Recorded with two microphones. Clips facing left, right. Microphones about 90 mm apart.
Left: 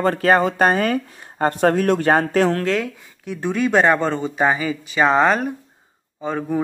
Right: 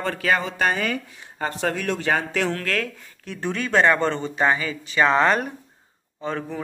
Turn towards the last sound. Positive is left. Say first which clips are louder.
# left 6 dB
turn(degrees=10)  # may be behind; listen again after turning